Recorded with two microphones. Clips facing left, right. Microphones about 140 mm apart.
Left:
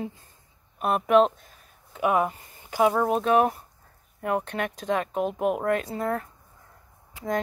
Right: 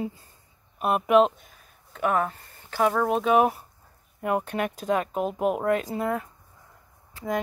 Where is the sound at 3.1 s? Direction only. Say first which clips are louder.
Even; centre (ahead or behind).